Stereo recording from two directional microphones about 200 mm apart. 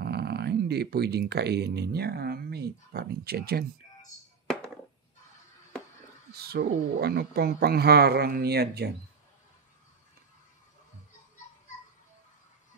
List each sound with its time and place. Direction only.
0.0 s speech: 55° right (ahead or behind)
6.3 s speech: 50° right (ahead or behind)